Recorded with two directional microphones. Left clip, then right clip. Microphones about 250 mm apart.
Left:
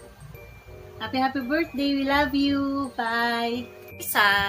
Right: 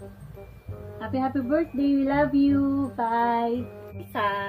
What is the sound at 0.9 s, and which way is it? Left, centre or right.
Speech, centre.